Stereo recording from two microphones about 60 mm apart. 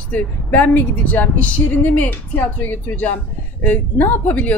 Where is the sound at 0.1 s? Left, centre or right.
Left.